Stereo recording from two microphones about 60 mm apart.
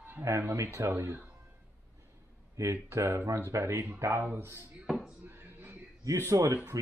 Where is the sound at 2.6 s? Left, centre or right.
Right.